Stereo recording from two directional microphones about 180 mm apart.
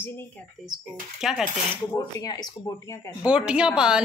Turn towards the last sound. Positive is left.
turn(degrees=-5)  # may be behind; listen again after turning